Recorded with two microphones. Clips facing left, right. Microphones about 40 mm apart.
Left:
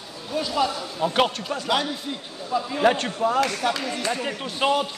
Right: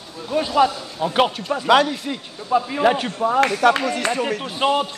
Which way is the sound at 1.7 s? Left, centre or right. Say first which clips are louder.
Right 9 dB; right.